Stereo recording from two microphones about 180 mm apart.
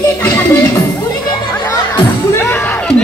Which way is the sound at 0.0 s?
10° left (ahead or behind).